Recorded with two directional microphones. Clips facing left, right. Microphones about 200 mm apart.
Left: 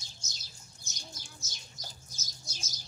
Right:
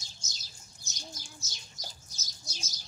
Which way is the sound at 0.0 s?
55° left (ahead or behind).